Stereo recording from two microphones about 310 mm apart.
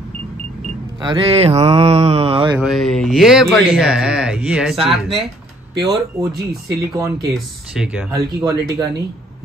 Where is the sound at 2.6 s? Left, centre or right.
Centre.